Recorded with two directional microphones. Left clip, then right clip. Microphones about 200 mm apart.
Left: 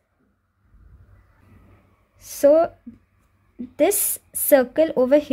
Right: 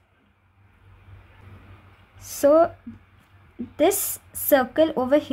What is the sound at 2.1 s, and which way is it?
Speech, 15° left (ahead or behind).